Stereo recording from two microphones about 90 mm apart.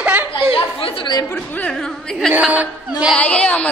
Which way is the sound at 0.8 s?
90° left.